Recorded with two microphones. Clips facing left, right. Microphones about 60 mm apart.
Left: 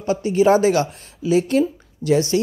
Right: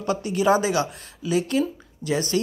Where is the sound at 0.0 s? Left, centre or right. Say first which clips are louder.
Left 5 dB; left.